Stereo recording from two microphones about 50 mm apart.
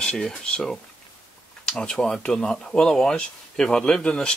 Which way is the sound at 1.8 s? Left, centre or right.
Centre.